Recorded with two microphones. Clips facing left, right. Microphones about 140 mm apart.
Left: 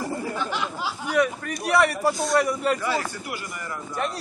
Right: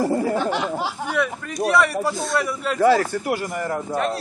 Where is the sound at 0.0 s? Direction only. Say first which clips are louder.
Right 9 dB; 35° right (ahead or behind).